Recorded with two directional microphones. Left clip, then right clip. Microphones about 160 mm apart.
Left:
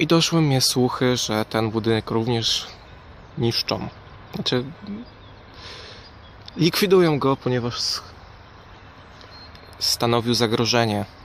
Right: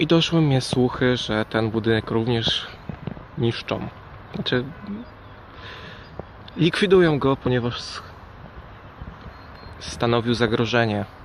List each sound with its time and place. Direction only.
0.0 s speech: 10° left (ahead or behind)
5.6 s a sound: 15° left (ahead or behind)
6.5 s speech: 15° left (ahead or behind)
9.9 s speech: 20° left (ahead or behind)